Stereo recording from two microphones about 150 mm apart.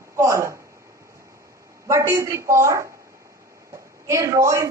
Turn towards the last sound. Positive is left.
turn(degrees=-20)  # may be behind; listen again after turning